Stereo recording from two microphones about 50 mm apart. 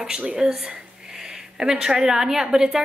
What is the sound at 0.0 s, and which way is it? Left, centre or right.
Speech, centre.